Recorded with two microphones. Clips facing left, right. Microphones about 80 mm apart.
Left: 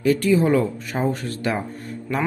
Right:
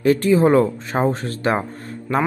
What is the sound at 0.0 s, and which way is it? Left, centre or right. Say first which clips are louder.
Speech: right 3 dB; right.